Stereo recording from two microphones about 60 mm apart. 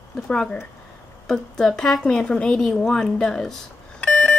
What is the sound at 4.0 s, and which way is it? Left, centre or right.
Beep, centre.